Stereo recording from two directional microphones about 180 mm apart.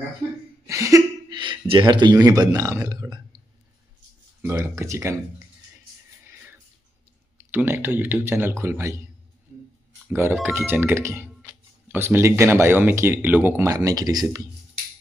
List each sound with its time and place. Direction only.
0.7 s speech: 15° right (ahead or behind)
7.3 s speech: 10° right (ahead or behind)
10.1 s speech: 10° right (ahead or behind)